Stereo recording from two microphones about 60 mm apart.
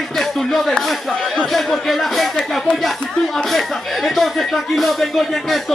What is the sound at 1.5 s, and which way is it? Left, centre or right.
Speech, centre.